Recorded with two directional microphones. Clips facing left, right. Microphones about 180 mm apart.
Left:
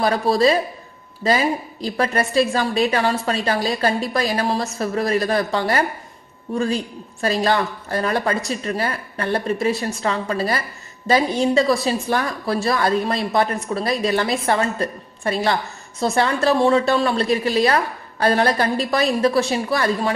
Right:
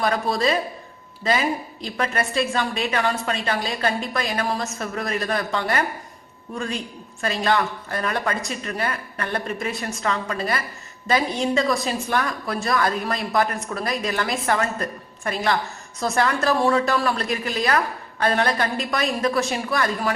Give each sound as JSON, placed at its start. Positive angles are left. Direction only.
{"t": 0.0, "sound": "a woman's voice", "side_deg": 35}